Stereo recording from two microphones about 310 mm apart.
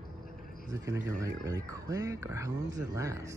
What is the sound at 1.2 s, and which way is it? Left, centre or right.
Speech, centre.